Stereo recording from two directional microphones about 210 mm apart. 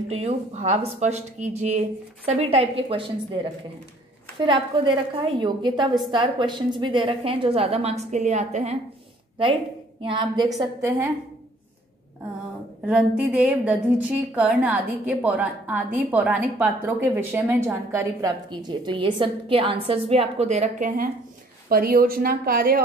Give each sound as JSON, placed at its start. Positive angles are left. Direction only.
{"t": 0.1, "sound": "speech", "side_deg": -30}
{"t": 4.4, "sound": "a woman's voice", "side_deg": -25}
{"t": 10.0, "sound": "a woman's voice", "side_deg": -20}
{"t": 12.8, "sound": "a woman's voice", "side_deg": -5}